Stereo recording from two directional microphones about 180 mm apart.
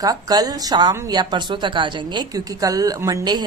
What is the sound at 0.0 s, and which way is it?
Speech, 20° right (ahead or behind).